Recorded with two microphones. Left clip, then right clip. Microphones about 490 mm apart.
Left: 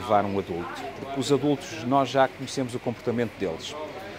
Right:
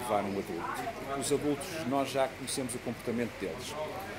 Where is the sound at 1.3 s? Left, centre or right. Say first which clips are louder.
Left 8 dB; left.